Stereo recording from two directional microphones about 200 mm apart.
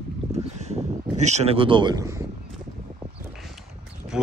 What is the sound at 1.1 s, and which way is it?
Speech, 35° right (ahead or behind).